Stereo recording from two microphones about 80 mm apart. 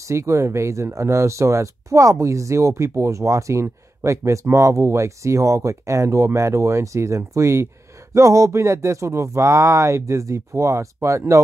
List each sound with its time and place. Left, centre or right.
0.0 s speech: right